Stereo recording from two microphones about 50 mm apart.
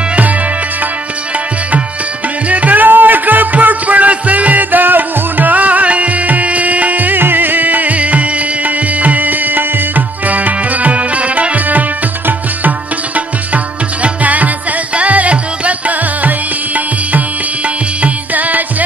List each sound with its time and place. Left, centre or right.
2.5 s music: right
12.3 s tabla: right
14.0 s music: right